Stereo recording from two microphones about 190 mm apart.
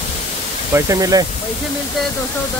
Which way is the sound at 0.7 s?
15° right (ahead or behind).